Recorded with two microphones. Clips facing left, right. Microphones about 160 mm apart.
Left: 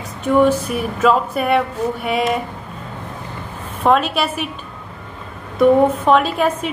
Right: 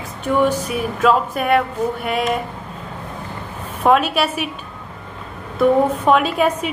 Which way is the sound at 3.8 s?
5° right (ahead or behind).